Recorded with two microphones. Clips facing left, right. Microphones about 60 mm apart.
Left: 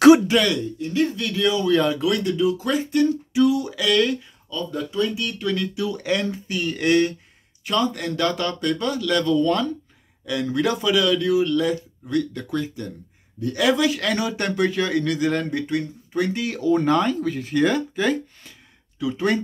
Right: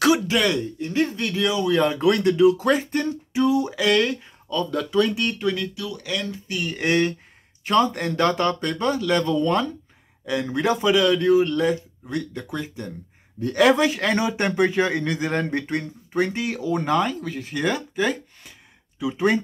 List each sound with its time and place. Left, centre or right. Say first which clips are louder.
0.3 s speech: left 2 dB; centre
0.7 s speech: left 1 dB; right
1.2 s speech: left 1 dB; centre
2.0 s speech: right 4 dB; right
3.3 s a sound: even; right
4.5 s speech: right 3 dB; right
5.8 s speech: left 5 dB; left
6.4 s speech: left 2 dB; centre
6.8 s speech: left 2 dB; right
13.4 s speech: right 2 dB; right; by 18.5 s centre
18.9 s speech: right 1 dB; centre